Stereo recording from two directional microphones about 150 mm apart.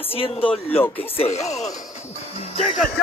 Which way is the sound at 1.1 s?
45° left (ahead or behind).